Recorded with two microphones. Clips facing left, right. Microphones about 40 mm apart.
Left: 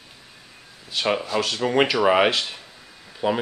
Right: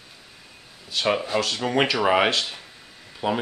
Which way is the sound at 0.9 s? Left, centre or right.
Centre.